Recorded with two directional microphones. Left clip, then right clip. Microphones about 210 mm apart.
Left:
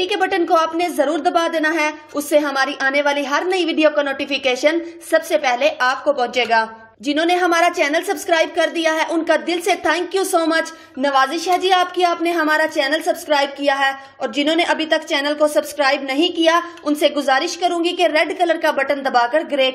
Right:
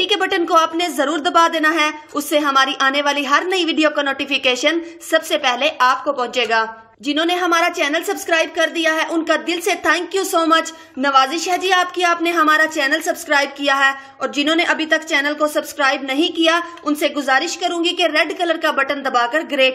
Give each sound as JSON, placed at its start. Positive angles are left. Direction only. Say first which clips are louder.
{"t": 0.0, "sound": "a woman's voice", "louder": "right 1 dB", "side_deg": -5}